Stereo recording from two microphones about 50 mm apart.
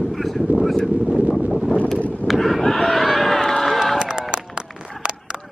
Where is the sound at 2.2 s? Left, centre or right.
Centre.